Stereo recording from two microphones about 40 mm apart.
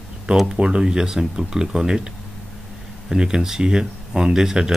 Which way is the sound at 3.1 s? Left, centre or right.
Centre.